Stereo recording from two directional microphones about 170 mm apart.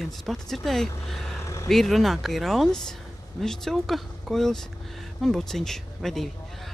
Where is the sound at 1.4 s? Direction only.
15° left (ahead or behind).